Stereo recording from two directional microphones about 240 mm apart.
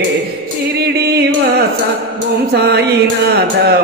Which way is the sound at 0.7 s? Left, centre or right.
Right.